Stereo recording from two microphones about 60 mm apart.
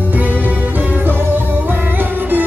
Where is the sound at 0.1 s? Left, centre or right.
Right.